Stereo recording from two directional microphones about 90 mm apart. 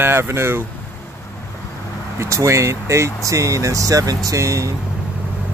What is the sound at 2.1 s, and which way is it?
Speech, 30° right (ahead or behind).